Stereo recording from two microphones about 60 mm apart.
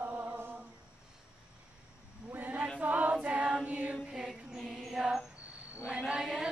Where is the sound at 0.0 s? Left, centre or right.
Right.